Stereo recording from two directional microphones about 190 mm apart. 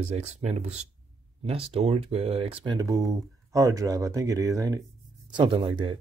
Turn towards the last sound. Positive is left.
turn(degrees=-25)  # may be behind; listen again after turning